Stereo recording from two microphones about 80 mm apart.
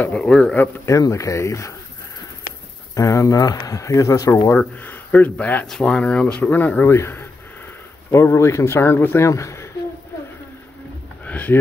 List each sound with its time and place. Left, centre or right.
0.0 s speech: centre
0.8 s speech: left
2.9 s speech: left
4.6 s speech: left
6.9 s speech: left
11.2 s a sound: centre